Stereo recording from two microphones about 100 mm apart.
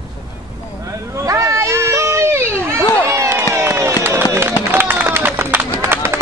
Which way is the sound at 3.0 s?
25° right (ahead or behind).